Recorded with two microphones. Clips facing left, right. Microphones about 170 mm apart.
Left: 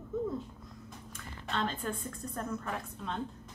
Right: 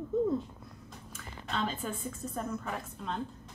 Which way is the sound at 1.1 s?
5° right (ahead or behind).